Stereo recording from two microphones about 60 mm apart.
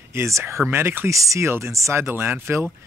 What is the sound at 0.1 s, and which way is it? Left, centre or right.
Speech, right.